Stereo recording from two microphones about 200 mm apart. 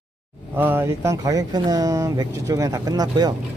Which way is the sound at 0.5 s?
10° right (ahead or behind).